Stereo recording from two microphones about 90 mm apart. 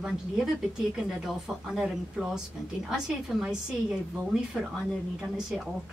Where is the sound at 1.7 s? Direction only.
5° right (ahead or behind).